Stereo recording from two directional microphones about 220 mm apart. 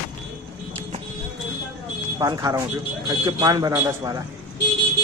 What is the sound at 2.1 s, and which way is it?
A man's voice, 15° right (ahead or behind).